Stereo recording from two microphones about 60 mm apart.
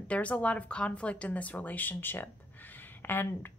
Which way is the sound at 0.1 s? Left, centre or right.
Left.